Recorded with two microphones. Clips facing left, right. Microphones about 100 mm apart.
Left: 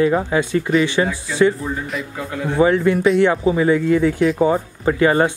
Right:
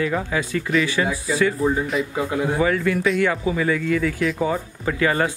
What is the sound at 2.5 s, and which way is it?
Speech, 25° left (ahead or behind).